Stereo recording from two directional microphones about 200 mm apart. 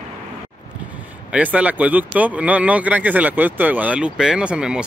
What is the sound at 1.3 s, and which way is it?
Speech, 5° right (ahead or behind).